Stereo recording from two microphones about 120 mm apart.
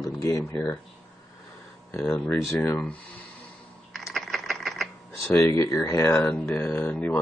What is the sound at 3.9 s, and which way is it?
Typing, centre (ahead or behind).